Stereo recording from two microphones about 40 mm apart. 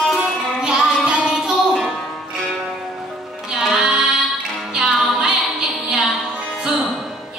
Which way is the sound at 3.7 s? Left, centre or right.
Centre.